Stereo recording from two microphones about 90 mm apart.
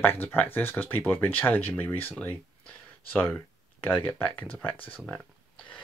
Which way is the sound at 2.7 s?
20° left (ahead or behind).